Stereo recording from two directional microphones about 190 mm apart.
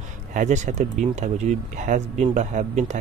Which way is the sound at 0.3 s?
40° right (ahead or behind).